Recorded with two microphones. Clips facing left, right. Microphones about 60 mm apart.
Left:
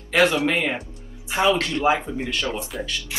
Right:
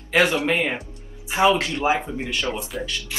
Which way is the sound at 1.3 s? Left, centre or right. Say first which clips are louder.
Right 1 dB; centre.